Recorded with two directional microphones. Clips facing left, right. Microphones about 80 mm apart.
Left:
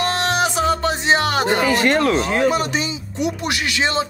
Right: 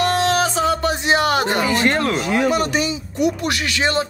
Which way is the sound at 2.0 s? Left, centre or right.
Left.